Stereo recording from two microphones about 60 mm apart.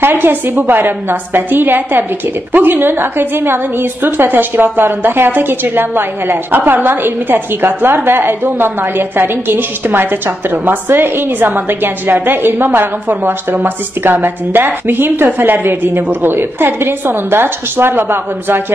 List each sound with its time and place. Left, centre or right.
0.0 s a woman's voice: right